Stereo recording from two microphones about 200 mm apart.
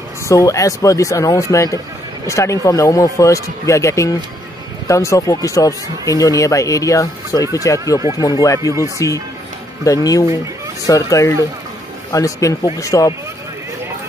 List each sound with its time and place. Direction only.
0.3 s speech: 15° left (ahead or behind)